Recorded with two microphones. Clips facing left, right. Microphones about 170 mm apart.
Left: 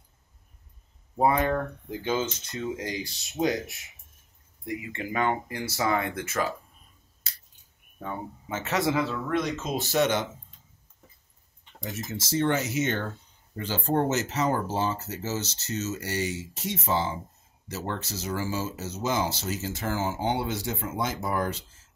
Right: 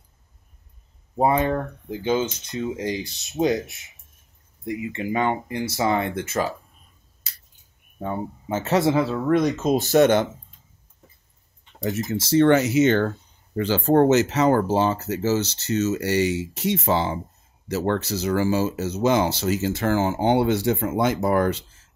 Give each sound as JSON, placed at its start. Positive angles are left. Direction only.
{"t": 1.1, "sound": "speech", "side_deg": -25}
{"t": 8.0, "sound": "speech", "side_deg": -30}
{"t": 9.3, "sound": "speech", "side_deg": -45}
{"t": 11.8, "sound": "speech", "side_deg": -65}